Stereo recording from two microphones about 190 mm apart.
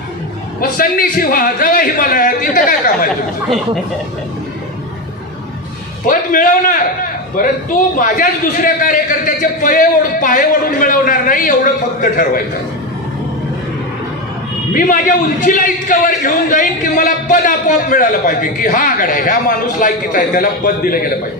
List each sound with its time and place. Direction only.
0.6 s a man's voice: 50° left (ahead or behind)
6.0 s a man's voice: 45° left (ahead or behind)
14.7 s a man's voice: 45° left (ahead or behind)